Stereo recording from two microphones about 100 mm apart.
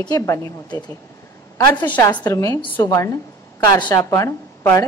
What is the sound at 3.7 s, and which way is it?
Speech, 50° left (ahead or behind).